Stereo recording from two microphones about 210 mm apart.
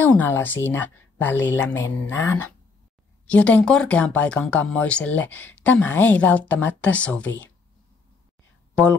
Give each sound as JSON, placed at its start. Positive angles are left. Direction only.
{"t": 0.0, "sound": "speech", "side_deg": 10}
{"t": 8.8, "sound": "speech", "side_deg": 5}